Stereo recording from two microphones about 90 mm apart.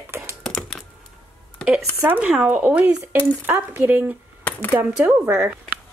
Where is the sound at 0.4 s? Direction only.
5° left (ahead or behind).